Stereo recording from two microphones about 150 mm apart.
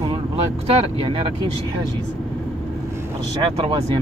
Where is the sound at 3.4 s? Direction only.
35° right (ahead or behind).